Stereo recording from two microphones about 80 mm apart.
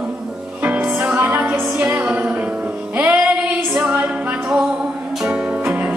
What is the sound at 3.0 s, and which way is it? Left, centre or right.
Music, centre.